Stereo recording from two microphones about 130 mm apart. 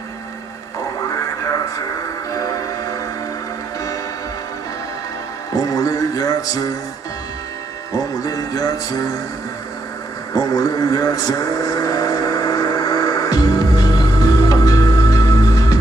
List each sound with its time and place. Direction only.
2.3 s music: 25° left (ahead or behind)
5.5 s music: 30° left (ahead or behind)
7.9 s music: 30° left (ahead or behind)
10.3 s vehicle: 30° left (ahead or behind)